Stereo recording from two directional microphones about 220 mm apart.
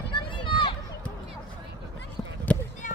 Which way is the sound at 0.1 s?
20° left (ahead or behind).